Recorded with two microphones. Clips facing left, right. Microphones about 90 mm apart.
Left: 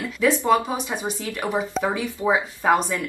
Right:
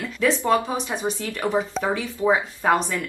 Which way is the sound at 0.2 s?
15° left (ahead or behind).